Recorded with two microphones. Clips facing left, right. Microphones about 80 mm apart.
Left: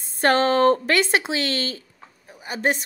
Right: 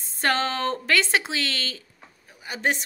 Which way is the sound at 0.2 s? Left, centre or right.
Left.